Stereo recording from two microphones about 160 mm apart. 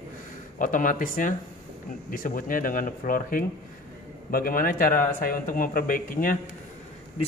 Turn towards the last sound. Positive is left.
turn(degrees=60)  # may be behind; listen again after turning